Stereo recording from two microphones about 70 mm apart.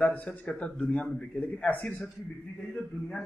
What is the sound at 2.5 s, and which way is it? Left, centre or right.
Speech, centre.